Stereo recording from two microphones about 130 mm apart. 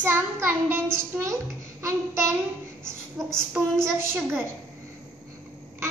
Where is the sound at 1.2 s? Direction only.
20° right (ahead or behind).